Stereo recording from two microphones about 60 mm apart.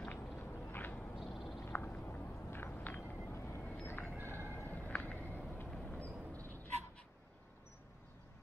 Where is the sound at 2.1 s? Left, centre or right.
Left.